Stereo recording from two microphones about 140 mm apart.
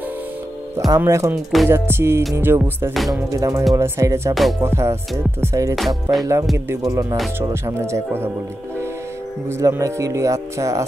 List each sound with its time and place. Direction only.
0.7 s speech: 25° right (ahead or behind)
1.3 s music: centre (ahead or behind)
1.7 s music: 15° right (ahead or behind)
3.1 s speech: 25° right (ahead or behind)
9.5 s speech: 20° right (ahead or behind)